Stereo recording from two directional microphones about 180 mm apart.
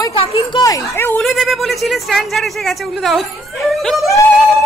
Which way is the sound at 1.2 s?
Centre (ahead or behind).